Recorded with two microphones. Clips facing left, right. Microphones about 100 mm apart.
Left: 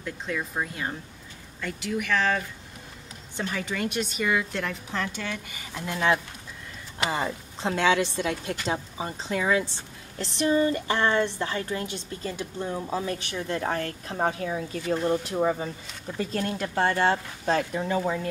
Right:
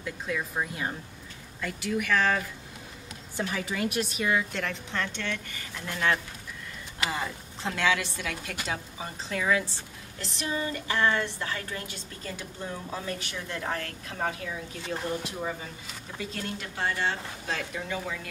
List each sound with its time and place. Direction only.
0.0 s a woman's voice: centre (ahead or behind); by 9.7 s 20° left (ahead or behind)
10.1 s a woman's voice: 35° left (ahead or behind)